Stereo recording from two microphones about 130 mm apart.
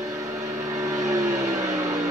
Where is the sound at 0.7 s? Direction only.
25° right (ahead or behind).